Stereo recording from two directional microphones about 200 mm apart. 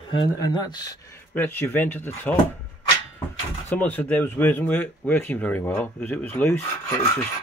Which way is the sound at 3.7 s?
10° left (ahead or behind).